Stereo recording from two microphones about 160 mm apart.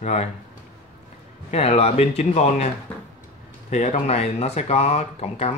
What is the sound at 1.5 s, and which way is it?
Speech, 40° left (ahead or behind).